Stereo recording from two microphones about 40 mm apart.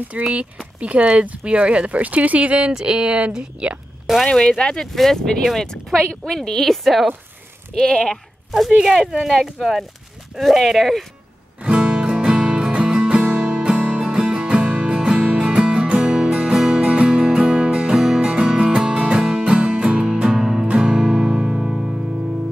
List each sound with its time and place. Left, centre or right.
0.1 s speech: right
2.7 s speech: centre
4.3 s speech: left
4.9 s speech: centre
6.7 s speech: centre
7.7 s speech: centre
8.5 s speech: centre
9.0 s speech: centre
9.3 s speech: centre
11.6 s music: right